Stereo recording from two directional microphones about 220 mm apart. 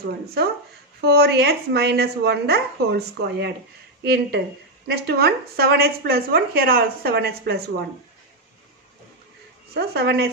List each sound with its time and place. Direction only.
0.0 s a woman's voice: 45° right (ahead or behind)
9.8 s a woman's voice: 45° right (ahead or behind)